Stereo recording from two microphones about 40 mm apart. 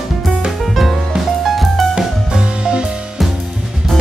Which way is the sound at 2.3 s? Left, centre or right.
Right.